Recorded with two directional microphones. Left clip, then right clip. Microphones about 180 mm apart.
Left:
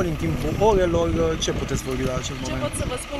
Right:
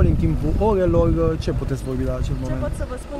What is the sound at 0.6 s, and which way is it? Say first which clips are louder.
Speech: even; 50° right (ahead or behind).